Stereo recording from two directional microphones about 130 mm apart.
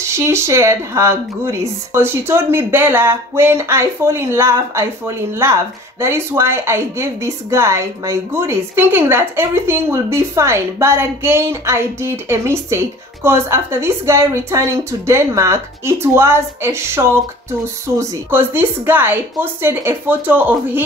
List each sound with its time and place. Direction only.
0.0 s speech: 20° right (ahead or behind)